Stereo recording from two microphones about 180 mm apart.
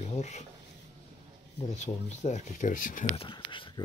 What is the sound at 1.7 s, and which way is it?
Speech, 40° left (ahead or behind).